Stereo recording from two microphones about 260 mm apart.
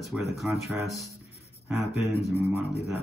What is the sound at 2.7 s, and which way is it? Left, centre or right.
Speech, left.